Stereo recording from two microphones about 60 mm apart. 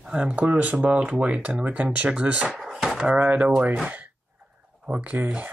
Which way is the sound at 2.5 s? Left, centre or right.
Centre.